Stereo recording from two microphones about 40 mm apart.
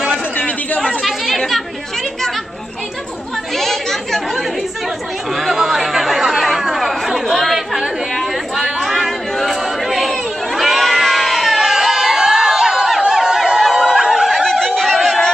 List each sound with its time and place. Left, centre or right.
1.0 s chatter: centre
3.5 s chatter: centre
5.3 s chatter: centre
8.7 s a sound: centre
13.7 s snicker: centre
14.3 s a sound: centre